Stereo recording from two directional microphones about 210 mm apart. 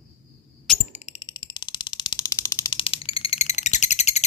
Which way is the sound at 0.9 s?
30° left (ahead or behind).